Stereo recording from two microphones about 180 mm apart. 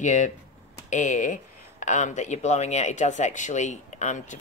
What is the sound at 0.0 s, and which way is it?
Speech, 40° left (ahead or behind).